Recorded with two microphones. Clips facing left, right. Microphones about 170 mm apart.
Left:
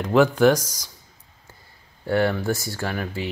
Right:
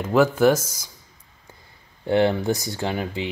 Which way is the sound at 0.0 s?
5° right (ahead or behind).